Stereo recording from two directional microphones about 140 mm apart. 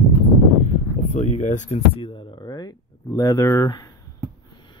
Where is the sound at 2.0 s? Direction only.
30° left (ahead or behind).